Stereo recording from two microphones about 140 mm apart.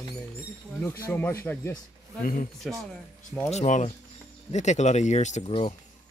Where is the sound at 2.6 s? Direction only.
5° left (ahead or behind).